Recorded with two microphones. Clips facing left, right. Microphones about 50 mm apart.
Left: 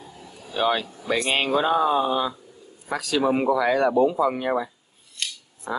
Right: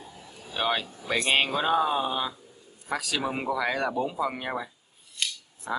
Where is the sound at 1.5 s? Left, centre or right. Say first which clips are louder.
Left 4 dB; centre.